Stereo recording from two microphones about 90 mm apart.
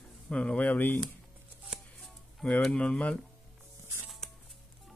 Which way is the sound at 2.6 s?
10° left (ahead or behind).